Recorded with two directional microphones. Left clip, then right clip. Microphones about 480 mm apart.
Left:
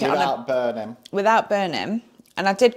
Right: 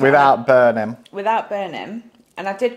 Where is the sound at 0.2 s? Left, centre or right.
Right.